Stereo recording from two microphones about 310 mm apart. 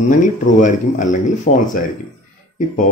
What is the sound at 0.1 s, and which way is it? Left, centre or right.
Speech, left.